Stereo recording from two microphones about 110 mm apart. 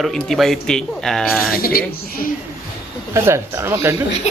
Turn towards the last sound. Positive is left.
turn(degrees=-25)  # may be behind; listen again after turning